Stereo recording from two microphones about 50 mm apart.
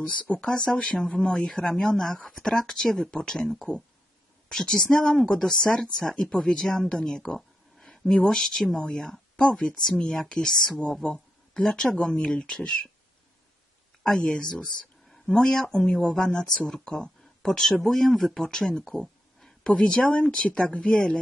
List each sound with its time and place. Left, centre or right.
0.0 s speech: left
0.5 s speech: centre
11.0 s speech: left
11.6 s speech: centre
14.0 s speech: centre
18.9 s a sound: centre
19.6 s speech: centre